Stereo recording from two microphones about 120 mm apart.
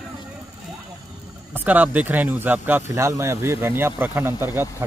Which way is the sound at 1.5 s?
15° right (ahead or behind).